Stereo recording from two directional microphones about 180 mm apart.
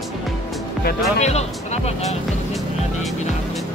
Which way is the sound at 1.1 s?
40° left (ahead or behind).